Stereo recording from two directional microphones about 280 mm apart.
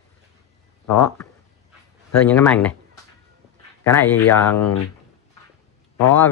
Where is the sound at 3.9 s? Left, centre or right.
Centre.